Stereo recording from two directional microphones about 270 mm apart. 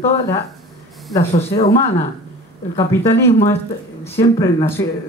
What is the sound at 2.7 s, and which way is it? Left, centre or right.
Speech, centre.